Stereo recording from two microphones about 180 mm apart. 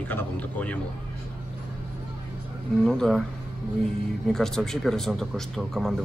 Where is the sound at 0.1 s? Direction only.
10° left (ahead or behind).